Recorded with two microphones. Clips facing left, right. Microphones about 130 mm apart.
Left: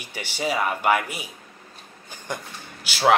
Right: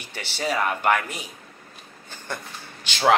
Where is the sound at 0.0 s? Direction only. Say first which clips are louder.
Left 1 dB; 10° left (ahead or behind).